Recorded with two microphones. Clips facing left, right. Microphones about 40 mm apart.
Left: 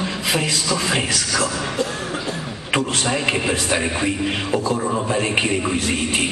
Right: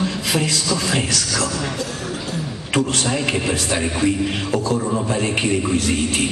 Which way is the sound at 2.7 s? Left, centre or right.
Centre.